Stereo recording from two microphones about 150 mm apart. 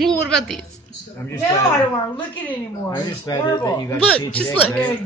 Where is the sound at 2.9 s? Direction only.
25° left (ahead or behind).